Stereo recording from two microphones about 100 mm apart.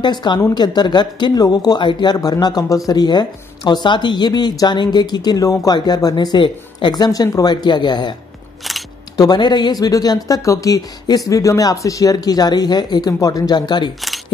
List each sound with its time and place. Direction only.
0.0 s speech: 50° left (ahead or behind)